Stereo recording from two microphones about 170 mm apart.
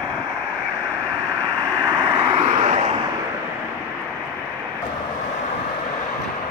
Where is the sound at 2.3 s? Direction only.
40° right (ahead or behind).